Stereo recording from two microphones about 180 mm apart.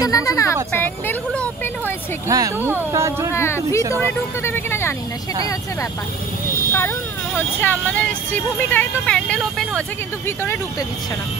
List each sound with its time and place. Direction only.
0.0 s a sound: 20° left (ahead or behind)
0.7 s vehicle: 10° left (ahead or behind)
2.2 s speech: 20° right (ahead or behind)
3.3 s speech: 15° left (ahead or behind)
6.7 s speech: 15° left (ahead or behind)